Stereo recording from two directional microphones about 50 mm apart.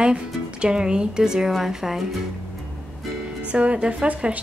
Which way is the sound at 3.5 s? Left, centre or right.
Right.